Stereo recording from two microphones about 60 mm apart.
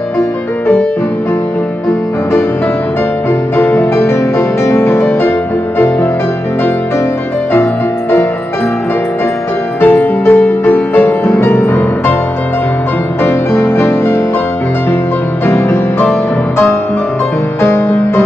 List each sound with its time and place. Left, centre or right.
3.5 s music: left
9.8 s music: left
13.2 s music: left
15.4 s music: left
17.6 s music: left